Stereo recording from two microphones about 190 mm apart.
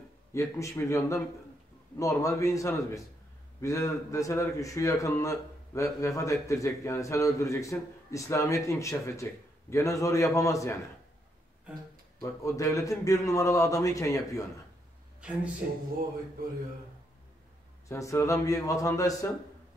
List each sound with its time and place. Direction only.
0.3 s a man's voice: 15° left (ahead or behind)
12.2 s a man's voice: 15° left (ahead or behind)
15.1 s speech: 5° right (ahead or behind)
17.8 s a man's voice: 15° left (ahead or behind)